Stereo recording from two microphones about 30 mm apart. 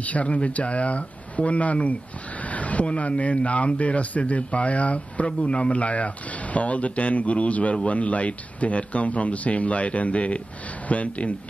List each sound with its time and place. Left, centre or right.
0.0 s speech: left
2.4 s vehicle: left
3.0 s speech: left
4.2 s speech: left